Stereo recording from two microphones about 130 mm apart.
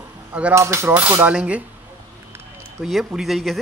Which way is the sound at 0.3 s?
10° right (ahead or behind).